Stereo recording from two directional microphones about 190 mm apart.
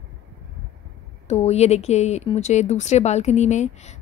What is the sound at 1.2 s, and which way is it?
Speech, 35° left (ahead or behind).